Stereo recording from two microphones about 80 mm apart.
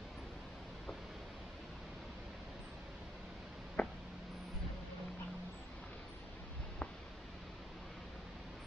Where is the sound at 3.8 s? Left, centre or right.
Centre.